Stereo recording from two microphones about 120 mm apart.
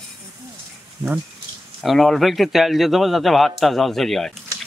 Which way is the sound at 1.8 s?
Centre (ahead or behind).